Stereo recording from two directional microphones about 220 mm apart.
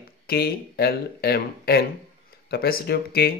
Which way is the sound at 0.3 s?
45° left (ahead or behind).